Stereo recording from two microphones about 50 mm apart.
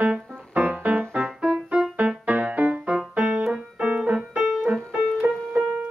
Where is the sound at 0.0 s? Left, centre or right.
Right.